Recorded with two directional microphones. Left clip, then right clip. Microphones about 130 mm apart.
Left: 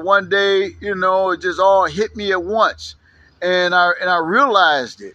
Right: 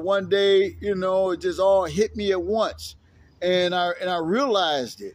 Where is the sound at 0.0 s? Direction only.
40° right (ahead or behind).